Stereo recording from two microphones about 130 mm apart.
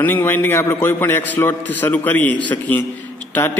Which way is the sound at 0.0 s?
15° left (ahead or behind).